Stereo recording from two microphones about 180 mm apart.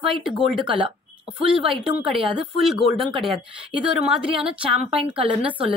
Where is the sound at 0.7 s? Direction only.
30° right (ahead or behind).